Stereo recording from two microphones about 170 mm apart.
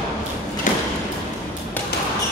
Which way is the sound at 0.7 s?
50° left (ahead or behind).